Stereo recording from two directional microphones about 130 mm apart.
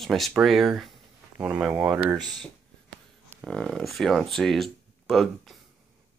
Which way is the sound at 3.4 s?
5° left (ahead or behind).